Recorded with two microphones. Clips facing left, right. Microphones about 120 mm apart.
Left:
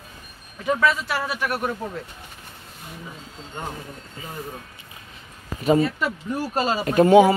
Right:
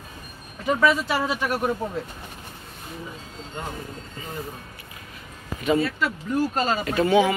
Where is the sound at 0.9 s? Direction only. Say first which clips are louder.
Right 3 dB; 15° right (ahead or behind).